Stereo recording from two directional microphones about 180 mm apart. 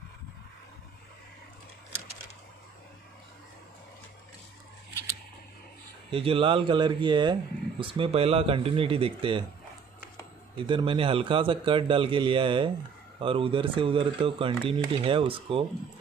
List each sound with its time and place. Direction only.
6.1 s a man's voice: 30° right (ahead or behind)
10.7 s a man's voice: 30° right (ahead or behind)